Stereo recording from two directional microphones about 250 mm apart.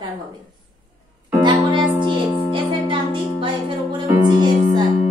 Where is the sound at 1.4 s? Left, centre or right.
Centre.